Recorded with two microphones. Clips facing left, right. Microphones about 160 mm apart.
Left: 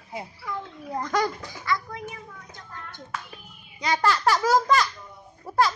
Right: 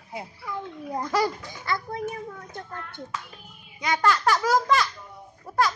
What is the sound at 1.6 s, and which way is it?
Speech, 30° right (ahead or behind).